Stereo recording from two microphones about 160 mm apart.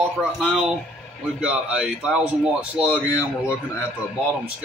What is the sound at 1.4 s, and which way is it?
Speech, 5° right (ahead or behind).